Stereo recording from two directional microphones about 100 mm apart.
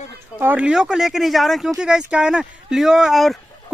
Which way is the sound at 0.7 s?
5° right (ahead or behind).